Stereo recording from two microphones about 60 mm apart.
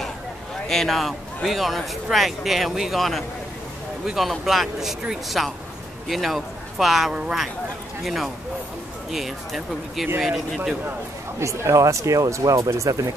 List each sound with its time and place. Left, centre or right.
0.7 s a man's voice: centre
8.0 s a man's voice: centre
11.3 s speech: right